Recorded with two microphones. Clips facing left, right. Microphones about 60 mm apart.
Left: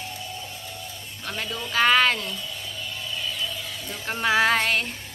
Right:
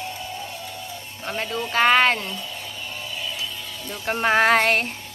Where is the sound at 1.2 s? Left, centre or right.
Right.